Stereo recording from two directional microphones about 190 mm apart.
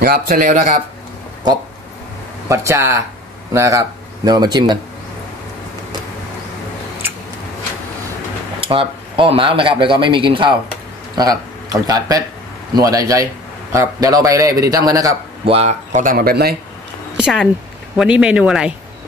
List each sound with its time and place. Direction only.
0.0 s speech: 50° right (ahead or behind)
2.4 s a man's voice: 15° right (ahead or behind)
8.5 s a man's voice: 30° right (ahead or behind)
15.5 s speech: 40° right (ahead or behind); by 16.5 s 55° right (ahead or behind)
17.2 s speech: centre (ahead or behind)